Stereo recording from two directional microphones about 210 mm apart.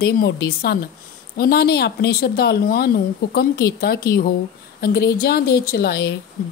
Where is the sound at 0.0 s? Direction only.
45° left (ahead or behind).